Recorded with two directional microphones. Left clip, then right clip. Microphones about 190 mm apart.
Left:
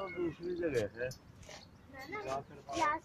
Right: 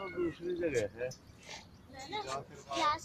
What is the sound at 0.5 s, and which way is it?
Cricket, 35° left (ahead or behind).